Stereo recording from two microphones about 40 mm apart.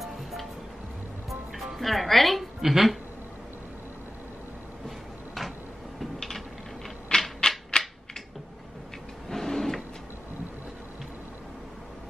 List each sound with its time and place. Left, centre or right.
0.0 s music: centre
1.8 s a woman's voice: centre
4.8 s cupboard open or close: centre
7.3 s typewriter: centre
9.3 s printer: centre